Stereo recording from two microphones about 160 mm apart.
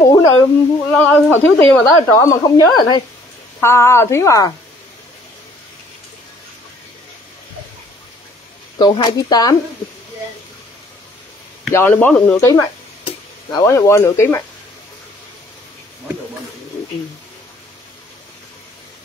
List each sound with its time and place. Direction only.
0.0 s a sound: 25° left (ahead or behind)
0.9 s speech: 10° left (ahead or behind)
3.6 s a woman's voice: 15° left (ahead or behind)
8.7 s speech: 25° left (ahead or behind)
11.7 s a woman's voice: 10° left (ahead or behind)
13.0 s speech: 25° left (ahead or behind)